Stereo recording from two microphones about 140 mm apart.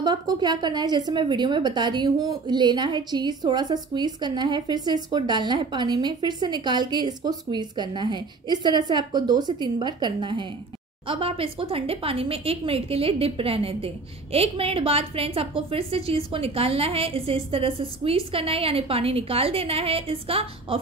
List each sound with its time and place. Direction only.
0.0 s a woman's voice: 30° right (ahead or behind)